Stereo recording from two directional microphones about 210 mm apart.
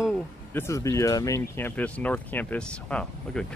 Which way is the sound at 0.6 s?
15° left (ahead or behind).